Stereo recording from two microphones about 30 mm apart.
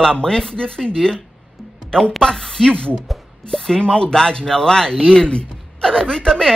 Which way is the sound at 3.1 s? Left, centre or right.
Centre.